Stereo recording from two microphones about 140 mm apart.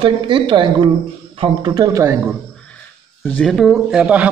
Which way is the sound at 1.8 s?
20° right (ahead or behind).